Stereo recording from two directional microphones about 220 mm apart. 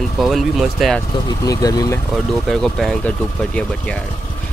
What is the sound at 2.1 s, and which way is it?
Speech, centre (ahead or behind).